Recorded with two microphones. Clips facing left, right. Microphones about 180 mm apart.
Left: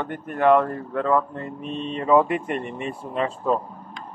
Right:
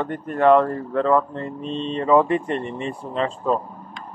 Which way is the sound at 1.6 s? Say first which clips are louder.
Right 3 dB; 30° right (ahead or behind).